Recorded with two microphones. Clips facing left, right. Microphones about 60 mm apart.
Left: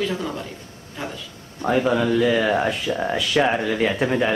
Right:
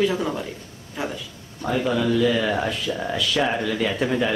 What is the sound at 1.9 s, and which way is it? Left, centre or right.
Speech, left.